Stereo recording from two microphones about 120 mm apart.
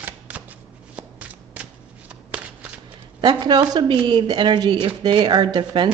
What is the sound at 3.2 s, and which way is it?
A woman's voice, 35° right (ahead or behind).